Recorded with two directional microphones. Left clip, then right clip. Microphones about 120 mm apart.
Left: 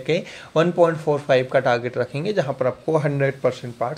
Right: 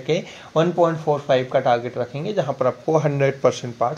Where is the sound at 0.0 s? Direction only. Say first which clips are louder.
Even; 20° left (ahead or behind).